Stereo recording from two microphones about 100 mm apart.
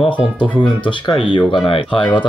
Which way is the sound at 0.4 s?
60° left (ahead or behind).